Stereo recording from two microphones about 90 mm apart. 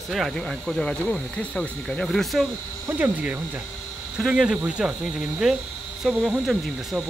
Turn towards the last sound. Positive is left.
turn(degrees=-10)  # may be behind; listen again after turning